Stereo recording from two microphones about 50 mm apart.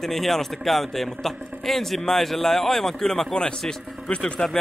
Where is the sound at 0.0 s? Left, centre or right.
Centre.